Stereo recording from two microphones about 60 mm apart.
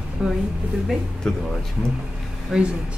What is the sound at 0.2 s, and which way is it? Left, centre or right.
Speech, centre.